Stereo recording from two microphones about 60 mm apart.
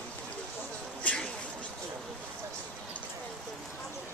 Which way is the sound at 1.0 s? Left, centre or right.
Centre.